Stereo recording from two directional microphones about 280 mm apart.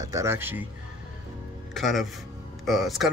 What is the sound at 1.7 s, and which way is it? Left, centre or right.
Speech, centre.